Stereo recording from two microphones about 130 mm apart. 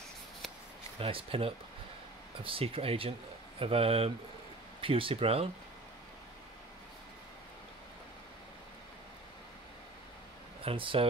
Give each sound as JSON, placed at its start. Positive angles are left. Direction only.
{"t": 0.9, "sound": "speech", "side_deg": -45}
{"t": 10.6, "sound": "speech", "side_deg": -45}